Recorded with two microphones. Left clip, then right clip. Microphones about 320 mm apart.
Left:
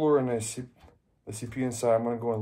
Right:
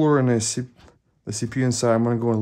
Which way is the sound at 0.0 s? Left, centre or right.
Right.